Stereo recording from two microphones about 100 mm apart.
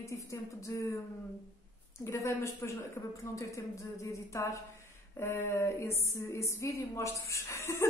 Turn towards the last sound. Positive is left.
turn(degrees=30)  # may be behind; listen again after turning